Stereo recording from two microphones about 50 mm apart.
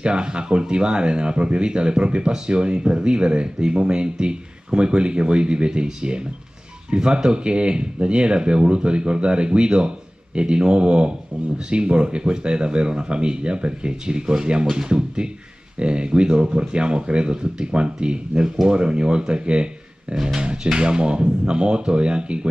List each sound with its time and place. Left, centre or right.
0.0 s speech: centre